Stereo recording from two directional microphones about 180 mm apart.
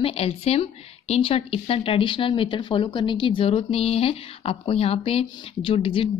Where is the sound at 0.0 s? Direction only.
35° left (ahead or behind).